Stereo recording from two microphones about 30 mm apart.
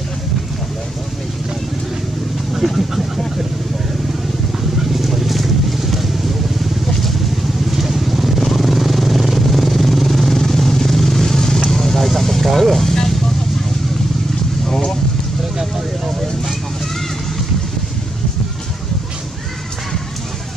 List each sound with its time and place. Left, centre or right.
2.5 s vehicle: centre
4.9 s vehicle: centre
7.7 s vehicle: centre
11.7 s vehicle: centre
14.7 s a sound: centre